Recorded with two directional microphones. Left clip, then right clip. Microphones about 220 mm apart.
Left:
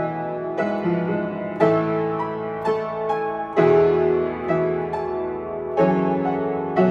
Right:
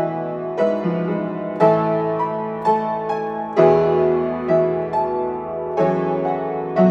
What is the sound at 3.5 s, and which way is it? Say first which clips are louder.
Music: right 2 dB; 35° right (ahead or behind).